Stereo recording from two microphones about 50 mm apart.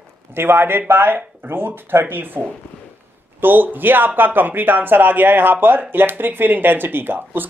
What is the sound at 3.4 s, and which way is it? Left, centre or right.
Speech, right.